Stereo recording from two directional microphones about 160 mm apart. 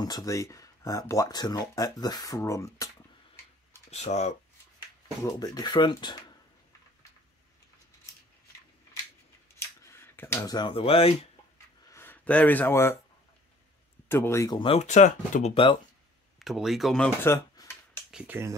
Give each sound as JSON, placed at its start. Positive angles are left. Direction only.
{"t": 0.0, "sound": "speech", "side_deg": 25}
{"t": 3.9, "sound": "speech", "side_deg": 45}
{"t": 5.2, "sound": "speech", "side_deg": 25}
{"t": 9.6, "sound": "a sound", "side_deg": 15}
{"t": 11.5, "sound": "a sound", "side_deg": 15}
{"t": 14.0, "sound": "speech", "side_deg": 15}
{"t": 14.6, "sound": "speech", "side_deg": 40}
{"t": 15.5, "sound": "speech", "side_deg": 30}
{"t": 16.3, "sound": "speech", "side_deg": 0}
{"t": 17.2, "sound": "a sound", "side_deg": 15}
{"t": 18.1, "sound": "speech", "side_deg": -10}